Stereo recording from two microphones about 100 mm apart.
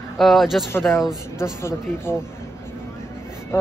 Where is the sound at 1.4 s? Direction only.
25° left (ahead or behind).